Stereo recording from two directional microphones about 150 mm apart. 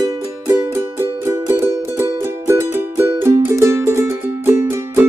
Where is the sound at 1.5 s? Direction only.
15° right (ahead or behind).